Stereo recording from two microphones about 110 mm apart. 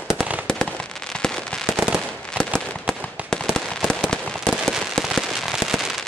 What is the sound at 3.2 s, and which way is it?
Fireworks, 15° right (ahead or behind).